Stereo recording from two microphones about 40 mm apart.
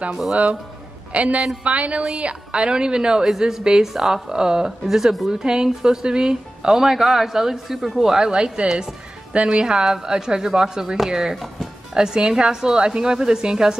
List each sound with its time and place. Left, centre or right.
0.1 s a woman's voice: centre
1.1 s speech: right
2.2 s a woman's voice: right
4.8 s a woman's voice: centre
5.4 s a woman's voice: centre